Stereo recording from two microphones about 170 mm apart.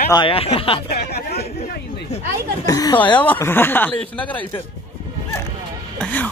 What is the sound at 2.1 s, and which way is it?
Speech, 40° left (ahead or behind).